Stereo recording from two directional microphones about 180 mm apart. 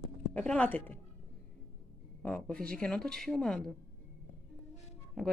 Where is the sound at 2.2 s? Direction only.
5° left (ahead or behind).